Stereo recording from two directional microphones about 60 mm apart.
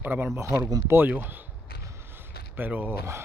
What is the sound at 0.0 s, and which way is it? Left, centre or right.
Speech, right.